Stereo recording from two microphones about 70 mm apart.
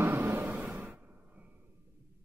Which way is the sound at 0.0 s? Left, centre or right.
Right.